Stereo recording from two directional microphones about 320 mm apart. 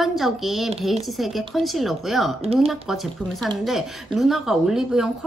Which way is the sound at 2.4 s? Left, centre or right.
Centre.